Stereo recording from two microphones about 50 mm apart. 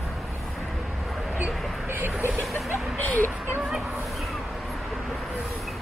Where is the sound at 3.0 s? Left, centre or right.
Left.